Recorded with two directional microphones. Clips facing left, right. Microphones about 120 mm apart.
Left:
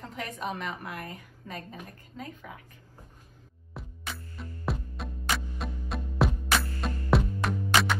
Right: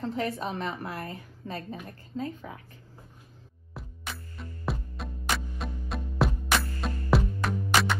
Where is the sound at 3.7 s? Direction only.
Centre (ahead or behind).